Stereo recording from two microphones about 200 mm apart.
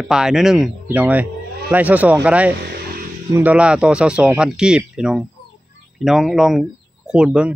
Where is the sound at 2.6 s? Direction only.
55° right (ahead or behind).